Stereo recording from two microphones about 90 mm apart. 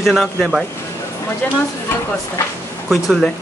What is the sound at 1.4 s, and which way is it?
Speech, 20° left (ahead or behind).